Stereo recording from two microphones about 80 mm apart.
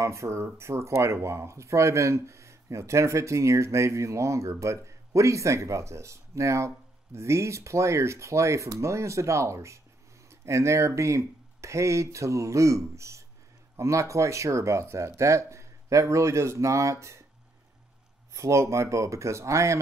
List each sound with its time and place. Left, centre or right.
0.0 s speech: right
18.3 s speech: right